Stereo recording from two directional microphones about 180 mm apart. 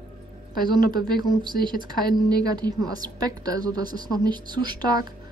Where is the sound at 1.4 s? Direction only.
25° right (ahead or behind).